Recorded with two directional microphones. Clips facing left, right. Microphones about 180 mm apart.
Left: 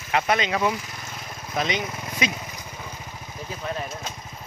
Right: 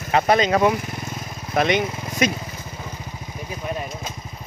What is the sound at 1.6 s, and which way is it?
Speech, 60° right (ahead or behind).